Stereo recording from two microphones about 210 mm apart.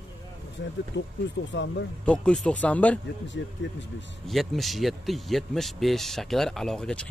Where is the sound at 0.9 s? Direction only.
60° left (ahead or behind).